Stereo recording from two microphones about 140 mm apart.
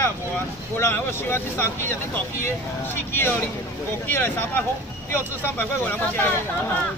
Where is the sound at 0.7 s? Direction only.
15° left (ahead or behind).